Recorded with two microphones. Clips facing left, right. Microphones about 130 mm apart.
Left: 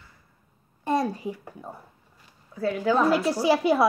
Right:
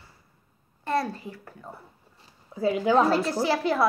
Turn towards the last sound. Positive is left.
turn(degrees=15)  # may be behind; listen again after turning